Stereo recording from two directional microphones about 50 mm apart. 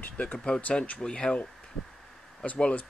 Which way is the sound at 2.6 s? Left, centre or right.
Left.